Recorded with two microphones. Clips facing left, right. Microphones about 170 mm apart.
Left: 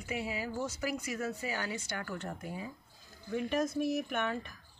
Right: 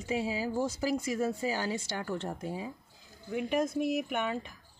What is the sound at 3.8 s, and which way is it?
Speech, 15° right (ahead or behind).